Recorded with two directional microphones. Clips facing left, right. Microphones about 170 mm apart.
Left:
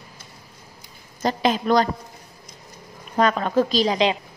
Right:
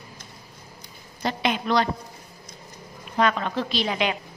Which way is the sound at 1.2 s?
40° left (ahead or behind).